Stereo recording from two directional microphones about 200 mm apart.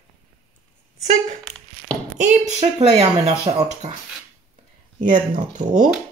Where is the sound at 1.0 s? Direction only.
35° right (ahead or behind).